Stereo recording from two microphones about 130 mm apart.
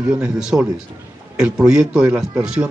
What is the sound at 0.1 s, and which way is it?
Speech, 5° right (ahead or behind).